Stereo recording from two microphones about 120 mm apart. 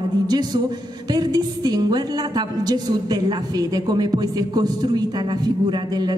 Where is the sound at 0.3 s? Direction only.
35° right (ahead or behind).